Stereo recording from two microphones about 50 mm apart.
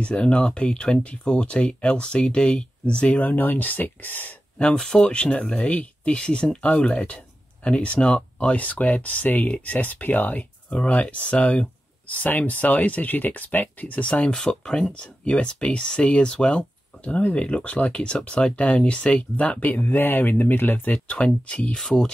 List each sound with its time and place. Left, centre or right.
0.0 s speech: left
4.7 s speech: centre
5.0 s speech: left
14.3 s speech: centre; by 21.2 s left
21.2 s speech: centre